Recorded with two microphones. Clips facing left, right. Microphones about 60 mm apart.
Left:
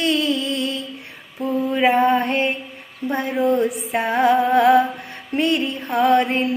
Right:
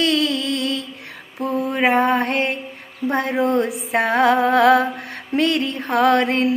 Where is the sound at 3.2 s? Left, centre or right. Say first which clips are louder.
Even; right.